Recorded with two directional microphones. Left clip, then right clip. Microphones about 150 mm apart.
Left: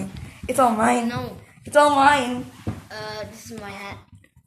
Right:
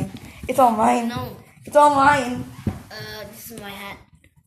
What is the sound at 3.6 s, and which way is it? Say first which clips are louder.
Speech: even; 35° left (ahead or behind).